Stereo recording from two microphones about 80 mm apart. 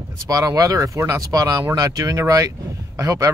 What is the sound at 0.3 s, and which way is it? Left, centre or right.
Speech, right.